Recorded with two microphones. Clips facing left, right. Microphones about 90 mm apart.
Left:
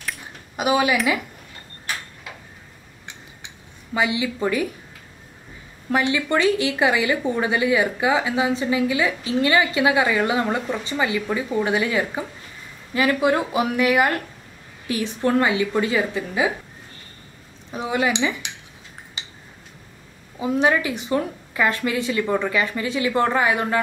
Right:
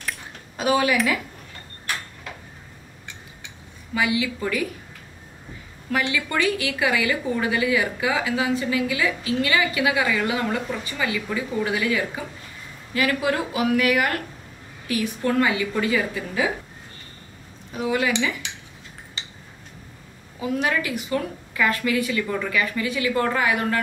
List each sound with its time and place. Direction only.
0.6 s a woman's voice: 15° left (ahead or behind)
3.9 s a woman's voice: 25° left (ahead or behind)
5.9 s a woman's voice: 25° left (ahead or behind)
17.7 s a woman's voice: 25° left (ahead or behind)
20.3 s a woman's voice: 25° left (ahead or behind)